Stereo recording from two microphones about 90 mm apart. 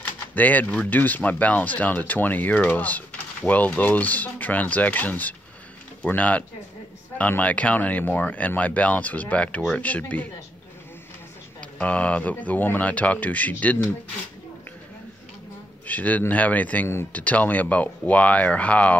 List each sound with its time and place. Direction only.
0.0 s speech: 20° left (ahead or behind)
11.6 s speech: 15° left (ahead or behind)
15.9 s speech: 15° left (ahead or behind)